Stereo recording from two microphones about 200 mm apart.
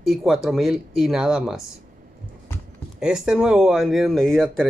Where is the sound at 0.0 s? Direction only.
Centre (ahead or behind).